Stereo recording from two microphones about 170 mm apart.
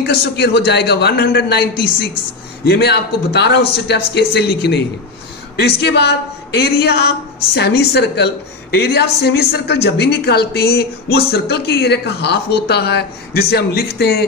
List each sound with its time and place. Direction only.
0.0 s speech: 75° left (ahead or behind)